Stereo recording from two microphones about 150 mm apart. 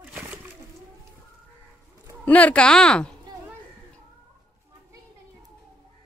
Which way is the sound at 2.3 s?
10° left (ahead or behind).